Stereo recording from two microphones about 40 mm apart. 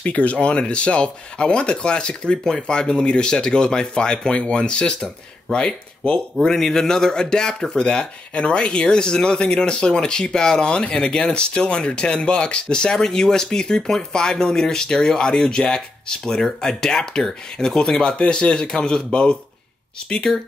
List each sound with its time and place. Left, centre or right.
0.0 s speech: left
6.4 s speech: centre